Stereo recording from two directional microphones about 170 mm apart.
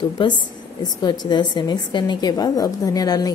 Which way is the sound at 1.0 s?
25° left (ahead or behind).